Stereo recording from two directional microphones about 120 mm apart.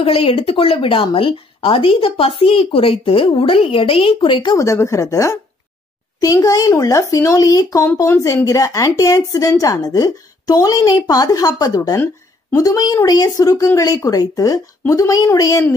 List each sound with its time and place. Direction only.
0.0 s speech: 50° left (ahead or behind)
4.6 s speech: 25° left (ahead or behind)
12.0 s a sound: 20° left (ahead or behind)
12.6 s speech: 30° left (ahead or behind)